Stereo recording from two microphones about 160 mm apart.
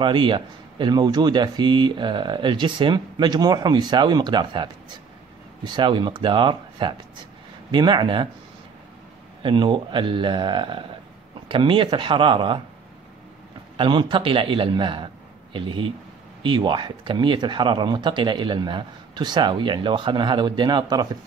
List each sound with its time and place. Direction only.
0.0 s speech: 30° right (ahead or behind)
9.4 s speech: 30° right (ahead or behind)
13.7 s speech: 30° right (ahead or behind)